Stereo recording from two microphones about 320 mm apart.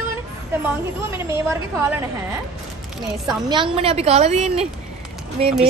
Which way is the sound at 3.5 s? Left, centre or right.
Centre.